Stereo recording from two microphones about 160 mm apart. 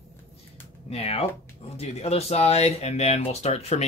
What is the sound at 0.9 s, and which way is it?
Speech, 40° left (ahead or behind).